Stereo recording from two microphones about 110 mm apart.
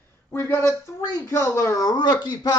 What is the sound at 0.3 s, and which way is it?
Speech, 25° left (ahead or behind).